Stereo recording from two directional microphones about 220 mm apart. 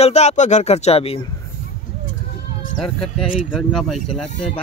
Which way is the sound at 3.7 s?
Centre (ahead or behind).